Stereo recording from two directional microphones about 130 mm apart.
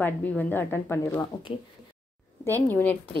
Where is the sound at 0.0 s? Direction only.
15° left (ahead or behind).